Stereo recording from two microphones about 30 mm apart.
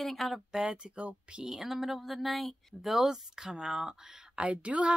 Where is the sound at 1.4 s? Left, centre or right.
Centre.